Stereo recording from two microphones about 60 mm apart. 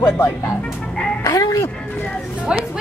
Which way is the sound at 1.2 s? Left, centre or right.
Left.